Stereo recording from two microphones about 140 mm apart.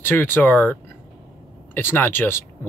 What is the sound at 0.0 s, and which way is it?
A man's voice, 15° left (ahead or behind).